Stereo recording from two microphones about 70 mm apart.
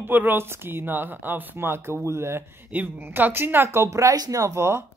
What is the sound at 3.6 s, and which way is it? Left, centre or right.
Speech, right.